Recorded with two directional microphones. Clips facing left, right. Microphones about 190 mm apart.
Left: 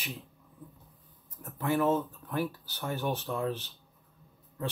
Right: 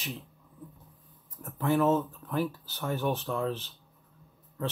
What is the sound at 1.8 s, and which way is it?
Speech, 15° left (ahead or behind).